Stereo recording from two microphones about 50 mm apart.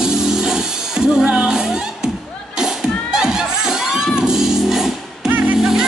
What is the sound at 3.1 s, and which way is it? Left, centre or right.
Music, centre.